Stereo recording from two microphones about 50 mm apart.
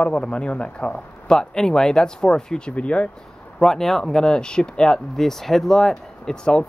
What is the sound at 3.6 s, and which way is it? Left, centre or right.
Speech, centre.